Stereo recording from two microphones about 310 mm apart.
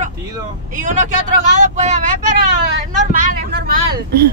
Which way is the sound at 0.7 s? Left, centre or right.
Right.